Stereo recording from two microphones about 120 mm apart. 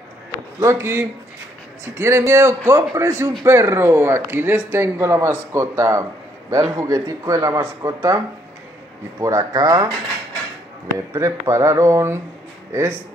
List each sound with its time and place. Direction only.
0.6 s speech: 25° right (ahead or behind)
9.2 s speech: 30° right (ahead or behind)
11.1 s speech: 25° right (ahead or behind)